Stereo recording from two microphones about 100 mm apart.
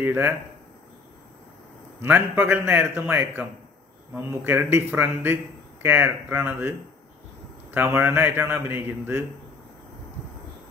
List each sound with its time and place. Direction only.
0.0 s a man's voice: 20° right (ahead or behind)
2.0 s a man's voice: 20° right (ahead or behind)
7.7 s a man's voice: 25° right (ahead or behind)